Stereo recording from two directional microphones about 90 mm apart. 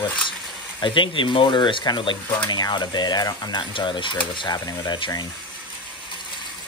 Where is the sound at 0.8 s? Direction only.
65° left (ahead or behind); by 3.6 s 50° left (ahead or behind).